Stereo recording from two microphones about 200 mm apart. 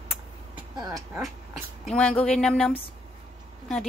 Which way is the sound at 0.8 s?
15° right (ahead or behind).